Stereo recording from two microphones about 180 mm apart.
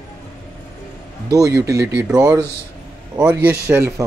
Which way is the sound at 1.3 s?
20° right (ahead or behind).